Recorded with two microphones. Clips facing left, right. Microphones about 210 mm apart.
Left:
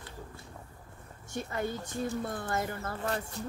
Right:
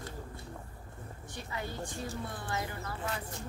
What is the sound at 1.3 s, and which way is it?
Speech, 50° left (ahead or behind).